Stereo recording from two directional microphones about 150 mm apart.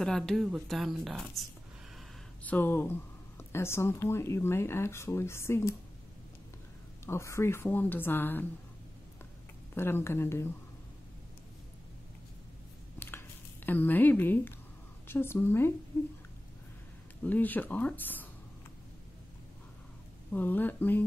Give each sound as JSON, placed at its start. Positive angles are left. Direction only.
{"t": 0.0, "sound": "a woman's voice", "side_deg": 5}
{"t": 2.4, "sound": "speech", "side_deg": 10}
{"t": 7.1, "sound": "speech", "side_deg": 20}
{"t": 9.8, "sound": "speech", "side_deg": 15}
{"t": 13.7, "sound": "speech", "side_deg": 10}
{"t": 17.2, "sound": "speech", "side_deg": 10}
{"t": 20.3, "sound": "speech", "side_deg": 10}